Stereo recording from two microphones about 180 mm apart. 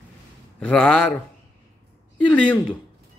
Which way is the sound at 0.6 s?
5° left (ahead or behind).